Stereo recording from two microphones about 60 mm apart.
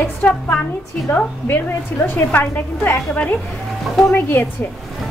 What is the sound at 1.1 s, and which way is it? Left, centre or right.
A woman's voice, left.